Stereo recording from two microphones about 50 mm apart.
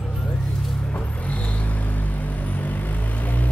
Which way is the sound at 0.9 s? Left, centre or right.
Left.